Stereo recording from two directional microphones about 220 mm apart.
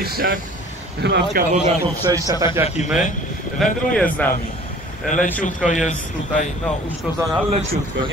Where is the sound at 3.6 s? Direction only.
Centre (ahead or behind).